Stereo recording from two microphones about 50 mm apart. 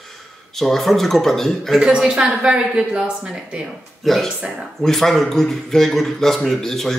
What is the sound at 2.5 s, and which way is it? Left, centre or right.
Speech, centre.